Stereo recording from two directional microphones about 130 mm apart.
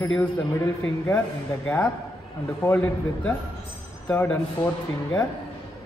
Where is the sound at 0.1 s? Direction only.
10° left (ahead or behind).